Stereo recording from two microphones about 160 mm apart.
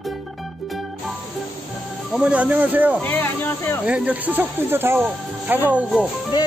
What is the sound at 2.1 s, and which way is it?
Speech, 5° right (ahead or behind).